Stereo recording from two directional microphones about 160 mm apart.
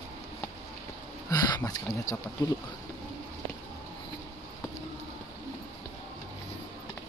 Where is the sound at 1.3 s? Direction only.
25° left (ahead or behind).